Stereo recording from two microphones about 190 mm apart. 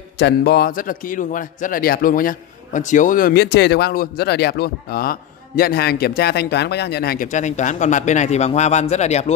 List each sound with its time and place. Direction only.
0.2 s a man's voice: 55° left (ahead or behind)
7.2 s a man's voice: 40° left (ahead or behind)